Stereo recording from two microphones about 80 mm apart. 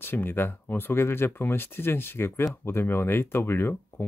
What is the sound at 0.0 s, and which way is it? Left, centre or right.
Speech, left.